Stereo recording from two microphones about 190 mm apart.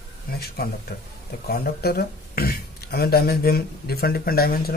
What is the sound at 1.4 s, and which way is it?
Speech, 55° left (ahead or behind).